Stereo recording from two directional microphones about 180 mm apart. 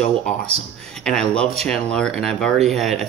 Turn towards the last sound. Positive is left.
turn(degrees=0)  # may be behind; listen again after turning